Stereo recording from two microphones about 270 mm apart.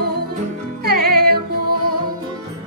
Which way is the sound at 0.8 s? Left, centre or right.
Right.